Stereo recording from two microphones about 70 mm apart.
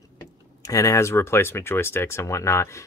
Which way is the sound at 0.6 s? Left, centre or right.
Left.